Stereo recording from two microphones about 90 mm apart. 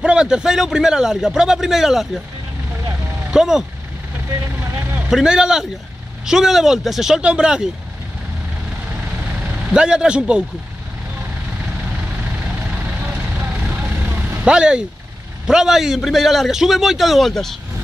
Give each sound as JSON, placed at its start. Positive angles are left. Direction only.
{"t": 0.0, "sound": "a man's voice", "side_deg": -10}
{"t": 3.3, "sound": "speech", "side_deg": -5}
{"t": 4.3, "sound": "speech", "side_deg": -35}
{"t": 5.1, "sound": "a man's voice", "side_deg": -10}
{"t": 9.4, "sound": "speech", "side_deg": -15}
{"t": 12.7, "sound": "vehicle", "side_deg": -20}
{"t": 14.4, "sound": "a man's voice", "side_deg": -10}